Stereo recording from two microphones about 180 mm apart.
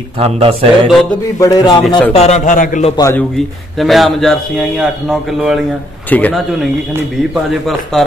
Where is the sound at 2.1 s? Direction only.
35° left (ahead or behind).